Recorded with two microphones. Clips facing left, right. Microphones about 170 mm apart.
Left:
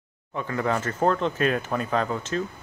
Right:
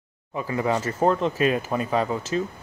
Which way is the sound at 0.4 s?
5° right (ahead or behind).